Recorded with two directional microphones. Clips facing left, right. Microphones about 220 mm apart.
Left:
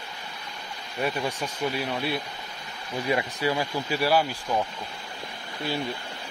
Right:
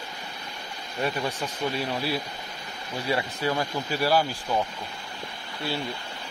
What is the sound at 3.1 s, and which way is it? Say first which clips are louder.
Speech: left 1 dB; 15° left (ahead or behind).